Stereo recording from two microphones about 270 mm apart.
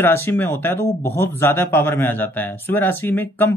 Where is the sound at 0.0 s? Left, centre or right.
Centre.